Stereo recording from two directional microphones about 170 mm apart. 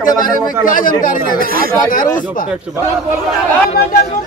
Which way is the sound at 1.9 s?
50° left (ahead or behind).